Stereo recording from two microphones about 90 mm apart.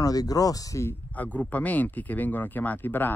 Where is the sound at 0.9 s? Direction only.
15° left (ahead or behind).